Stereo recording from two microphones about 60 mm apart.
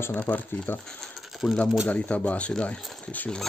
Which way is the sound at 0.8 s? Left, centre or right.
Centre.